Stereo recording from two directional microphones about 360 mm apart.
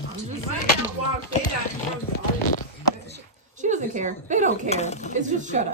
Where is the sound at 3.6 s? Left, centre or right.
Centre.